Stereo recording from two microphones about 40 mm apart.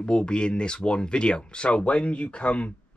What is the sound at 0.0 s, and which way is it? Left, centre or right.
Speech, left.